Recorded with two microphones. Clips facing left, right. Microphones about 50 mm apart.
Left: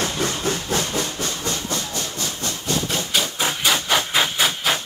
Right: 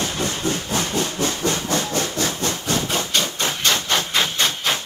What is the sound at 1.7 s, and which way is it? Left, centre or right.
Steam, right.